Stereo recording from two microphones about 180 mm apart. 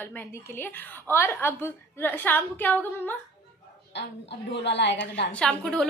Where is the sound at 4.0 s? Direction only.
75° left (ahead or behind).